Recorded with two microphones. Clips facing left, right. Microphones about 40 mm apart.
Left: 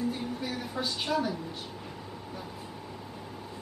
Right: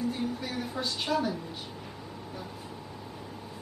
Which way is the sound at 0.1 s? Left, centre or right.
Centre.